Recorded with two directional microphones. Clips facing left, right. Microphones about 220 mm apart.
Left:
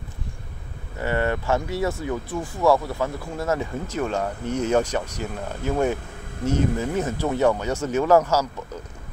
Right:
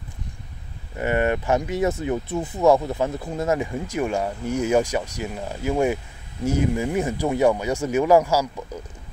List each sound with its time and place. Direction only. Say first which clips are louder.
0.9 s speech: right 2 dB; 15° right (ahead or behind)